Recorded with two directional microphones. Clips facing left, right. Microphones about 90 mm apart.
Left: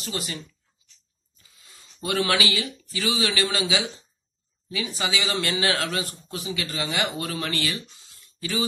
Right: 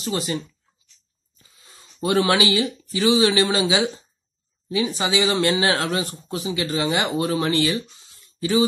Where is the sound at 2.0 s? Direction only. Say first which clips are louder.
Right 5 dB; 25° right (ahead or behind).